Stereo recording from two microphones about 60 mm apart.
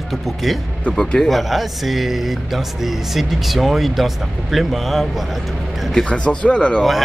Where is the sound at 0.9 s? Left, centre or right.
Centre.